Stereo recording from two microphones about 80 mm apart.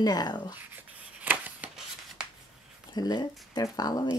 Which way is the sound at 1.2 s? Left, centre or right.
Right.